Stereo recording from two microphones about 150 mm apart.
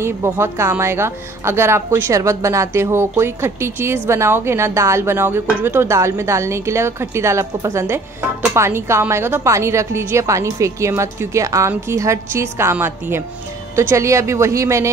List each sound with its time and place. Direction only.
0.0 s a woman's voice: 15° right (ahead or behind)